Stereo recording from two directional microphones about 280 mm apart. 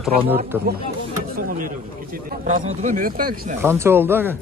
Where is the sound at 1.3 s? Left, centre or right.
Right.